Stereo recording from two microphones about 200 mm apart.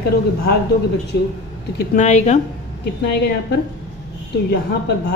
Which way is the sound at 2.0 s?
35° left (ahead or behind).